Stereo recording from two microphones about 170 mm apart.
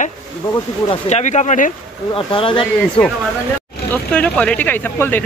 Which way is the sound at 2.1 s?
30° left (ahead or behind).